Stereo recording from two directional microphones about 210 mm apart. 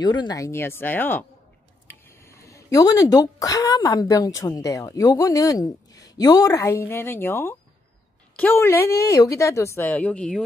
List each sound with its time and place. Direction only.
0.0 s speech: 20° left (ahead or behind); by 10.4 s 5° left (ahead or behind)